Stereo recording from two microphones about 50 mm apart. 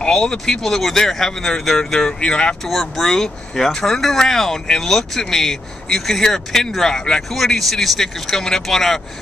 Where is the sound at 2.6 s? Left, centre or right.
Centre.